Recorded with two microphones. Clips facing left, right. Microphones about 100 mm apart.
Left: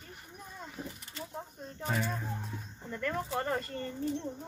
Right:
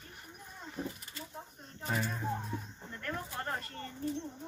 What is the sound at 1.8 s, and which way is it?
Speech, centre (ahead or behind).